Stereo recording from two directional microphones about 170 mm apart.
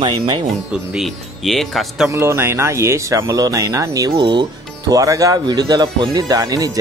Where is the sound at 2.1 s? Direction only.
15° right (ahead or behind).